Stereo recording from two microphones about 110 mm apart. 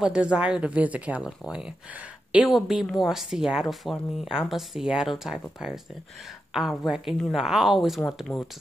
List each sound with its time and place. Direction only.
0.0 s speech: 10° right (ahead or behind)
8.3 s speech: 25° left (ahead or behind)